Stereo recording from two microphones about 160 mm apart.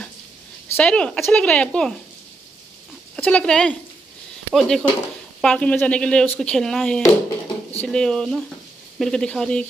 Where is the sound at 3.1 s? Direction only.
10° left (ahead or behind).